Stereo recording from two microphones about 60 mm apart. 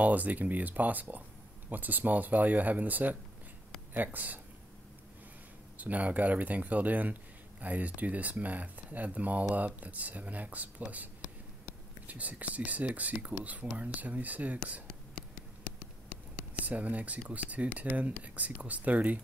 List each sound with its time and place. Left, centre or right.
0.0 s speech: right
5.8 s speech: right
12.1 s speech: right
14.9 s a sound: centre
16.6 s speech: right